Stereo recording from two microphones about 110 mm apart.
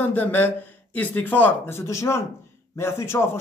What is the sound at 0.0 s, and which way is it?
A man's voice, 15° left (ahead or behind).